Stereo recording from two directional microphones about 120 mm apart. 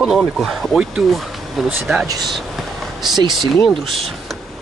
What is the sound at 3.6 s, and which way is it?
Speech, 5° left (ahead or behind).